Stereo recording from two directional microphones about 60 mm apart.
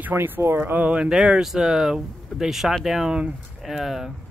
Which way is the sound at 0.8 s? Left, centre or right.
Centre.